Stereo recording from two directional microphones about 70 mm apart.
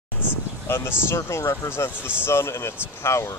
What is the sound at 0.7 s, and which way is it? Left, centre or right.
A man's voice, left.